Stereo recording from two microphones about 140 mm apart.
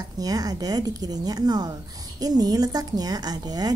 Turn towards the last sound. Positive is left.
turn(degrees=-30)  # may be behind; listen again after turning